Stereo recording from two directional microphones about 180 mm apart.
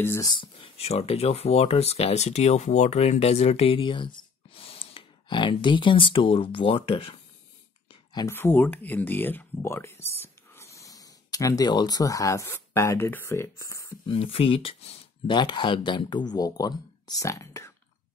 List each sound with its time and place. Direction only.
0.0 s speech: 15° left (ahead or behind)
0.3 s speech: 30° left (ahead or behind)
7.9 s a sound: 25° left (ahead or behind)
8.3 s speech: 10° left (ahead or behind)
14.0 s speech: 30° left (ahead or behind); by 17.7 s 15° left (ahead or behind)